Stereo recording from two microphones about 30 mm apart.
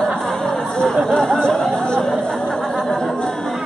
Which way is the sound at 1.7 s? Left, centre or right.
Left.